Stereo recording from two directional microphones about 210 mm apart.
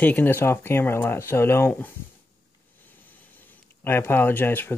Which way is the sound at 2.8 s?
10° left (ahead or behind).